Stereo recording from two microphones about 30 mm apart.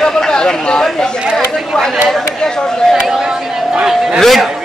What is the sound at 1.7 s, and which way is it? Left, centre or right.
Speech, left.